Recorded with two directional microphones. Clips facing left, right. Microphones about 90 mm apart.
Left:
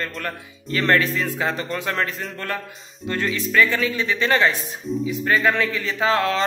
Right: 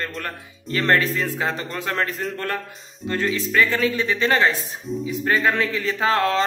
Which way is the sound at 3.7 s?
40° right (ahead or behind).